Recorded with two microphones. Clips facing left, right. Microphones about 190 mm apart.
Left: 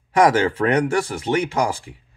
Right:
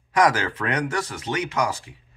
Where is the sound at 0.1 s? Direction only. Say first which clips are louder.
Left 5 dB; 25° left (ahead or behind).